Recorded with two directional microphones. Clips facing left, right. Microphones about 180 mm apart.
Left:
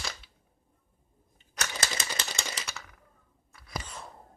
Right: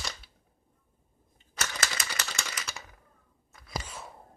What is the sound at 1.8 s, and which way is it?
Typewriter, 25° left (ahead or behind).